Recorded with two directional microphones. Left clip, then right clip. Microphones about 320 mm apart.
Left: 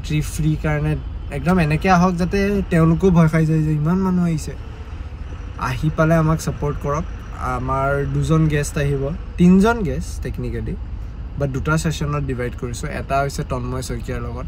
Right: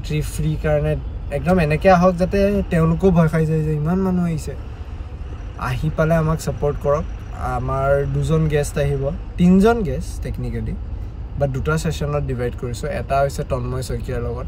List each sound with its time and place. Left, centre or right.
0.1 s speech: centre
5.6 s speech: centre